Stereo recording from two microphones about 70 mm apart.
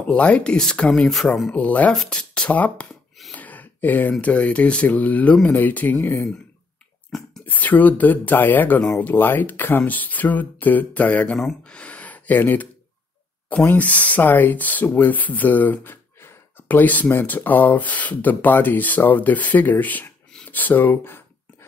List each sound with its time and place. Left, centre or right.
0.0 s speech: centre
1.1 s speech: centre
1.5 s speech: left
3.3 s a sound: left
4.2 s speech: left
7.1 s whispering: centre
7.4 s speech: left
13.7 s speech: left